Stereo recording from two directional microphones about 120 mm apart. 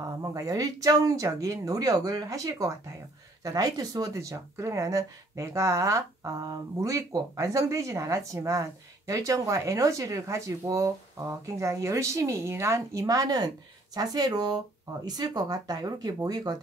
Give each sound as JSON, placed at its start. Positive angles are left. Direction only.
{"t": 0.0, "sound": "speech", "side_deg": -30}